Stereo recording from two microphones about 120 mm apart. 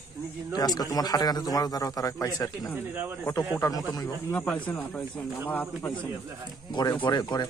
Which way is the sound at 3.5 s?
30° left (ahead or behind).